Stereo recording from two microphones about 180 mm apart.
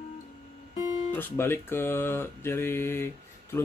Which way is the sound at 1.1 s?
10° left (ahead or behind).